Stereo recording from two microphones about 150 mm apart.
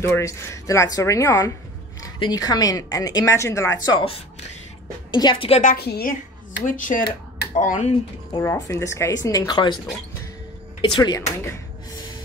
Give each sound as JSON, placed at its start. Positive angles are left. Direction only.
{"t": 0.0, "sound": "speech", "side_deg": 20}
{"t": 5.1, "sound": "a woman's voice", "side_deg": 30}
{"t": 5.6, "sound": "a woman's voice", "side_deg": 75}
{"t": 6.6, "sound": "speech", "side_deg": 60}
{"t": 8.3, "sound": "speech", "side_deg": 25}
{"t": 10.8, "sound": "speech", "side_deg": 30}